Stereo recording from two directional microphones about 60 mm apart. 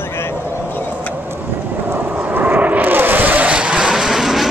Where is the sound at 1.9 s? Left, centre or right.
Right.